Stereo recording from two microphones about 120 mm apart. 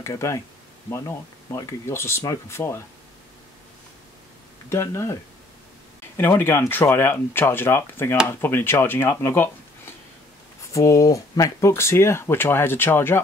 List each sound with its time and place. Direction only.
0.0 s speech: 25° left (ahead or behind)
4.6 s speech: 20° left (ahead or behind)
10.6 s speech: 25° left (ahead or behind)